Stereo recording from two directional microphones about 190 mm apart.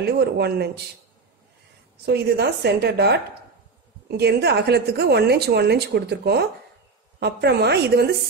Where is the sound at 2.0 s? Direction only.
60° right (ahead or behind).